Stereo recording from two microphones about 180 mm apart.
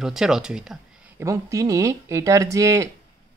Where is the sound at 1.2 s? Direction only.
15° right (ahead or behind).